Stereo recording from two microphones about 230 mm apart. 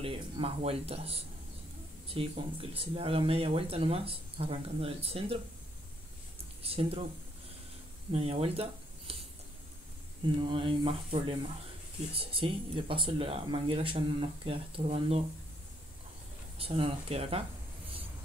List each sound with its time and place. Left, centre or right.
0.0 s speech: right
6.6 s speech: right
8.1 s speech: right
10.2 s speech: right
16.5 s speech: right